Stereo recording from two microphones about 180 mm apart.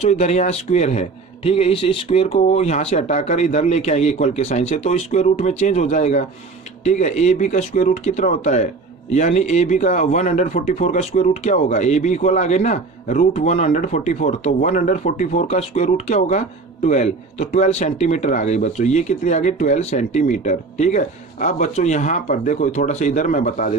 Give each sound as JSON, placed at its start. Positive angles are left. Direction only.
{"t": 0.0, "sound": "speech", "side_deg": 40}